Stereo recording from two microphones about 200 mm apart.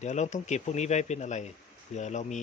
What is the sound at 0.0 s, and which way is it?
Speech, 35° left (ahead or behind).